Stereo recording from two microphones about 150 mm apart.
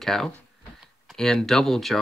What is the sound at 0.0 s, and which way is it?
Speech, centre (ahead or behind).